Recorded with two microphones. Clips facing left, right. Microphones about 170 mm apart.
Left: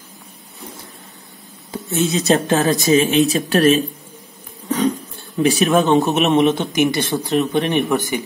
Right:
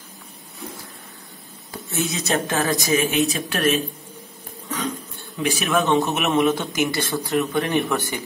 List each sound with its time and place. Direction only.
1.7 s a sound: 20° left (ahead or behind)
2.1 s speech: 35° left (ahead or behind)
2.6 s speech: 20° left (ahead or behind)
5.4 s speech: 35° left (ahead or behind)
6.4 s speech: 20° left (ahead or behind)